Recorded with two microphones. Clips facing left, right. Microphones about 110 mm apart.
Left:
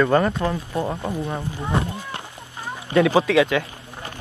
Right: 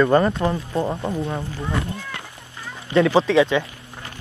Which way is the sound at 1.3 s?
15° left (ahead or behind).